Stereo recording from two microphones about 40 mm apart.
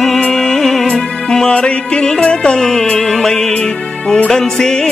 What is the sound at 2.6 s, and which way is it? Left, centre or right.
Music, centre.